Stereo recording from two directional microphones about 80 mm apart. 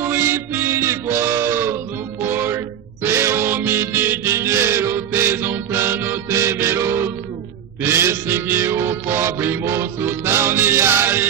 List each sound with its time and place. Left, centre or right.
0.0 s mantra: right
2.2 s music: right